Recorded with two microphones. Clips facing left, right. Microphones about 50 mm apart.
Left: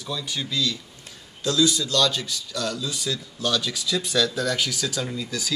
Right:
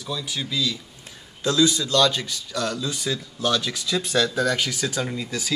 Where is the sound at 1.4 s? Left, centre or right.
Right.